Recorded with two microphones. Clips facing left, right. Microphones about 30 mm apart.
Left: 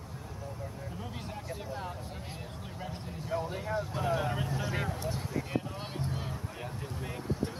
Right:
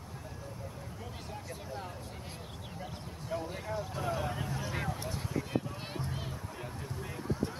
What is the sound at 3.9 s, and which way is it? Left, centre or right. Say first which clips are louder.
Vehicle: left 4 dB; centre.